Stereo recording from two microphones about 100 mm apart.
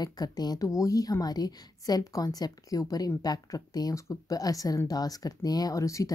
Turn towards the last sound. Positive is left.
turn(degrees=35)  # may be behind; listen again after turning